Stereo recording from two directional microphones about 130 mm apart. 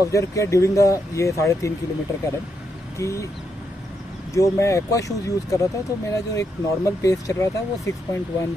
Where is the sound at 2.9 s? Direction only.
25° left (ahead or behind).